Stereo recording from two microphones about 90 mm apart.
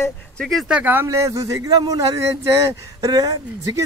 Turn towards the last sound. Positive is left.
turn(degrees=-40)  # may be behind; listen again after turning